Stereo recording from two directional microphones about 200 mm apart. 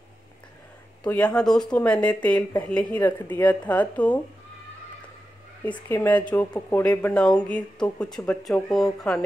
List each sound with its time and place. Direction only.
1.0 s speech: 5° left (ahead or behind)
5.7 s speech: 10° left (ahead or behind)